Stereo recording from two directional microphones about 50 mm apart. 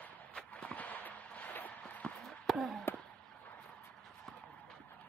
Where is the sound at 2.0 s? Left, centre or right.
Left.